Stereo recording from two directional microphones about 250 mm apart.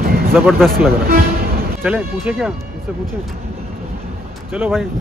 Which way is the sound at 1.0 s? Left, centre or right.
Right.